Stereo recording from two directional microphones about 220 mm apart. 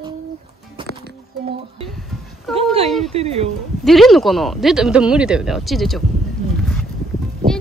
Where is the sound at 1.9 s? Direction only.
Centre (ahead or behind).